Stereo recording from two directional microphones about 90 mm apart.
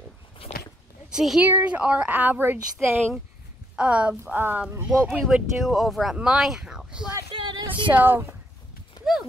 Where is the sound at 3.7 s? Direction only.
10° right (ahead or behind).